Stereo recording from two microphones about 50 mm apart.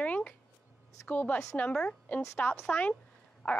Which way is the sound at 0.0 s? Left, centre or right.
Left.